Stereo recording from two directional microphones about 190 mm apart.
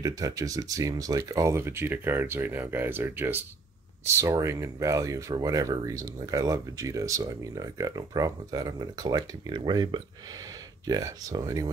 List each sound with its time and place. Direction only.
0.0 s speech: 15° right (ahead or behind)